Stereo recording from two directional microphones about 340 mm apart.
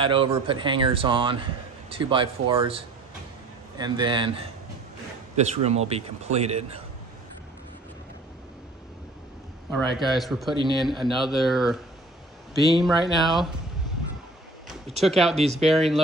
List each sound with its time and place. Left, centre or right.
0.0 s a man's voice: centre
9.7 s speech: centre
10.5 s a man's voice: centre
10.8 s speech: centre
14.9 s speech: centre
15.3 s a man's voice: centre